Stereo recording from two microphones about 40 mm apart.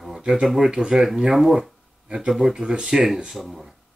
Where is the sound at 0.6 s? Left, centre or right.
Centre.